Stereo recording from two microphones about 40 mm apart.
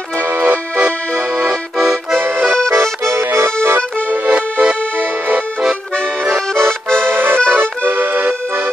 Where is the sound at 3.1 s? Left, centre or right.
Right.